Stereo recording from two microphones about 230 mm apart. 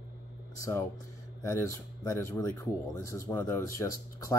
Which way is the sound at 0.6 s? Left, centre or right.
Centre.